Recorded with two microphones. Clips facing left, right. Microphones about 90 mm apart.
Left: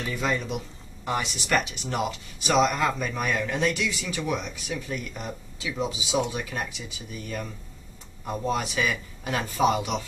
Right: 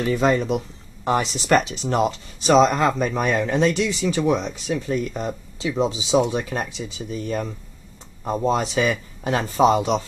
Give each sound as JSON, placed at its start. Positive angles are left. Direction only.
{"t": 0.0, "sound": "speech", "side_deg": -40}